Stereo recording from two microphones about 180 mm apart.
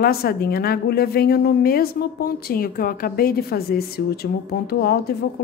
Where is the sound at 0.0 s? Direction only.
55° left (ahead or behind).